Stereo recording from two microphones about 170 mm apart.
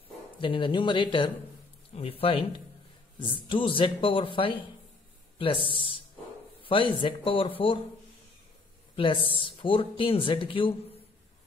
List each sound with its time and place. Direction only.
0.4 s speech: 30° left (ahead or behind)
8.9 s speech: 30° left (ahead or behind)